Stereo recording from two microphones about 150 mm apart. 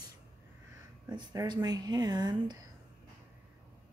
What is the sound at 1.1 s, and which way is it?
Speech, 30° right (ahead or behind).